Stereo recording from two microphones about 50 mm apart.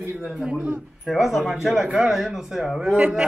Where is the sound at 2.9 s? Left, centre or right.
Right.